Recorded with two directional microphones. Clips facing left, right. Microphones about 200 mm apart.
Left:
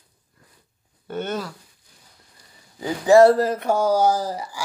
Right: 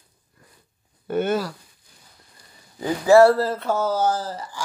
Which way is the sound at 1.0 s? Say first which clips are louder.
Right 5 dB; 10° right (ahead or behind).